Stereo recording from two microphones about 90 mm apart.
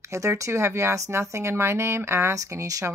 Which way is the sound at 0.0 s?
35° right (ahead or behind).